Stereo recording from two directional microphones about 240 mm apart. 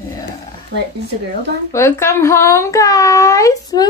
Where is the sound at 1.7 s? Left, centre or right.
Centre.